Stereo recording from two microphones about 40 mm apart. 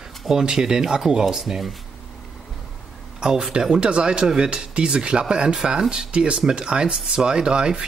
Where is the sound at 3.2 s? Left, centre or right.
Centre.